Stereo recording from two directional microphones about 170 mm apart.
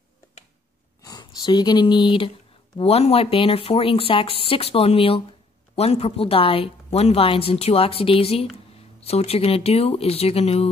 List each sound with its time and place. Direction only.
1.0 s a woman's voice: 25° left (ahead or behind)